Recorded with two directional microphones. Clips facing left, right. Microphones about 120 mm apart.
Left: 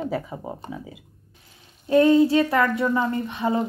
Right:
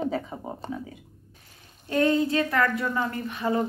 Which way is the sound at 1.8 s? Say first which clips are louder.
Left 7 dB; 25° left (ahead or behind).